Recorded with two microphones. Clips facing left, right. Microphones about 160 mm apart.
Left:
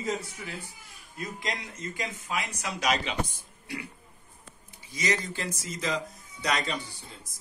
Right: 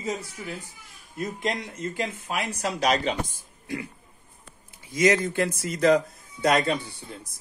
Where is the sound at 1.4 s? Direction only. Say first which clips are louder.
Right 7 dB; 50° right (ahead or behind).